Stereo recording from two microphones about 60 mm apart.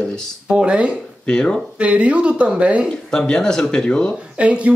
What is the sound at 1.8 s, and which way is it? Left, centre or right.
Speech, right.